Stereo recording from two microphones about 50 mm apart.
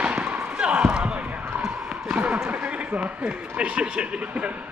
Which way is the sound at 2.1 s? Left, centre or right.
Right.